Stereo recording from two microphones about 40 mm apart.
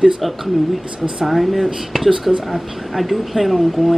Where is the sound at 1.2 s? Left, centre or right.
Centre.